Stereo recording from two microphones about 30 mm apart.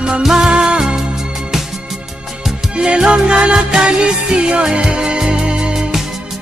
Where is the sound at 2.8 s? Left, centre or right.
Right.